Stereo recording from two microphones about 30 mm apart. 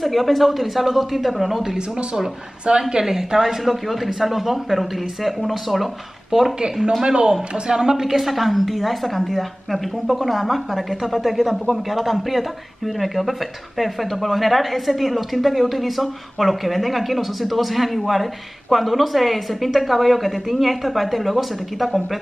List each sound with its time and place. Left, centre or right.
0.0 s speech: centre
2.7 s a woman's voice: right
3.1 s a woman's voice: centre
3.4 s speech: centre
6.3 s speech: right
8.1 s speech: centre